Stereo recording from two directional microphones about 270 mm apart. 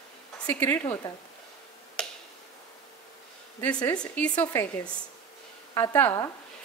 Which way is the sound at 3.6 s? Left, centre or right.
Centre.